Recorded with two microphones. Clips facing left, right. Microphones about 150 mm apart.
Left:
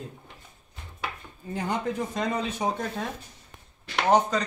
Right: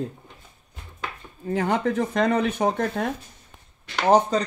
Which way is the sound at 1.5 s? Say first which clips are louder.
Right 6 dB; 85° right.